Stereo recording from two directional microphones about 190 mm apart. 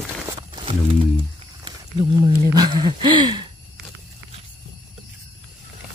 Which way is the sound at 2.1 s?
20° right (ahead or behind).